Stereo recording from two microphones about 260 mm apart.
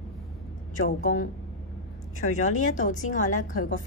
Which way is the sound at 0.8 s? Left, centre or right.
Left.